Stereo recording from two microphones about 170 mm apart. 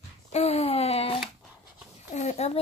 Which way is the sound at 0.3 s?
40° left (ahead or behind).